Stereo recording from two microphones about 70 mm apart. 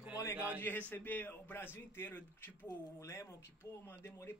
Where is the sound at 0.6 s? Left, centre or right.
Left.